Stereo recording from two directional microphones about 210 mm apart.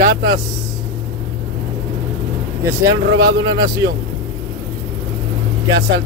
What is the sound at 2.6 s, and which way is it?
Speech, 15° right (ahead or behind).